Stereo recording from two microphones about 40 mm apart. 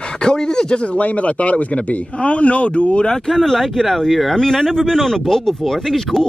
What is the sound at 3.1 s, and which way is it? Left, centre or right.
Speech, centre.